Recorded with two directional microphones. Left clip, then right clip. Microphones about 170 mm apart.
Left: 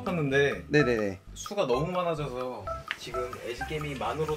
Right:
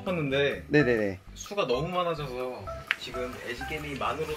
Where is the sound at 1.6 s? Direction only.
50° left (ahead or behind).